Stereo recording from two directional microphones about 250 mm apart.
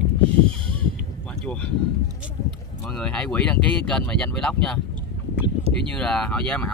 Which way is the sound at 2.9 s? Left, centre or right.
Centre.